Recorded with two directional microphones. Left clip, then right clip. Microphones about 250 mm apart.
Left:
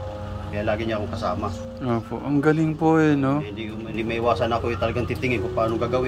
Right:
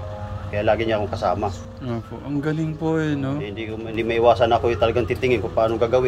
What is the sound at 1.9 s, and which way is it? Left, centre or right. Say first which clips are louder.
Speech: left 4 dB; centre.